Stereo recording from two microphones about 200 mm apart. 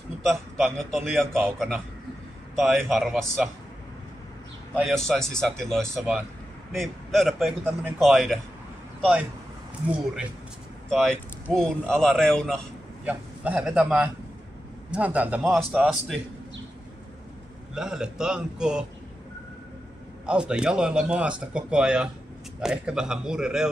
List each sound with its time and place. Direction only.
0.2 s speech: centre (ahead or behind)
4.7 s speech: centre (ahead or behind)
5.9 s a man's voice: 10° right (ahead or behind)
6.7 s speech: centre (ahead or behind)
10.9 s speech: 5° left (ahead or behind)
13.0 s a man's voice: 5° right (ahead or behind)
17.7 s speech: 5° right (ahead or behind)
20.2 s speech: 5° right (ahead or behind)